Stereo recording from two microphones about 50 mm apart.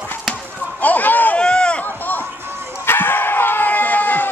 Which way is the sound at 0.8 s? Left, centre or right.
Left.